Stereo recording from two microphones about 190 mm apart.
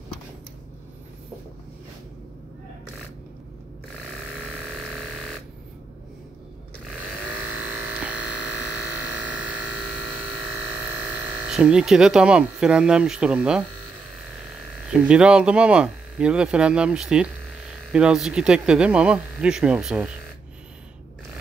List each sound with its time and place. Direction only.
7.7 s electric shaver: 5° right (ahead or behind)
9.2 s a sound: 10° right (ahead or behind)
10.7 s speech: 10° right (ahead or behind)
14.9 s speech: 5° right (ahead or behind)